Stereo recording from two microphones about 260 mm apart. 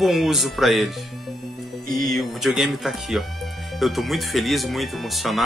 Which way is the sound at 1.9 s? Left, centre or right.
Centre.